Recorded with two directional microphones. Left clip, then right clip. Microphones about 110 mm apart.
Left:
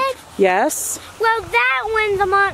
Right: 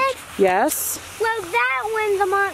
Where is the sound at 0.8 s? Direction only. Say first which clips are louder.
Left 5 dB; 50° left (ahead or behind).